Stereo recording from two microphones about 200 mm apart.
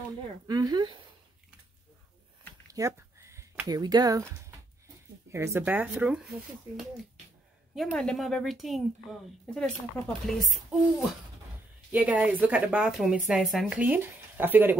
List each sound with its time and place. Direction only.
0.5 s a woman's voice: 20° right (ahead or behind)
2.7 s a sound: 15° right (ahead or behind)
5.3 s a woman's voice: 15° right (ahead or behind)
7.7 s a woman's voice: centre (ahead or behind)